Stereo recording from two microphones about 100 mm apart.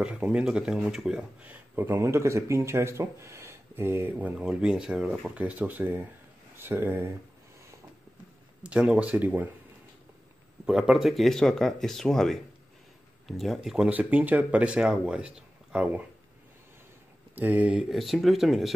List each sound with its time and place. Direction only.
0.0 s speech: 10° right (ahead or behind)
2.0 s speech: 30° right (ahead or behind)
4.4 s speech: 10° right (ahead or behind)
8.6 s speech: 10° right (ahead or behind)
10.6 s speech: 5° right (ahead or behind)
17.4 s speech: 15° right (ahead or behind)
17.8 s speech: centre (ahead or behind)